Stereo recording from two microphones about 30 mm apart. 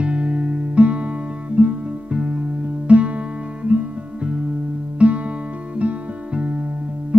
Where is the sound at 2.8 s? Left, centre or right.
Right.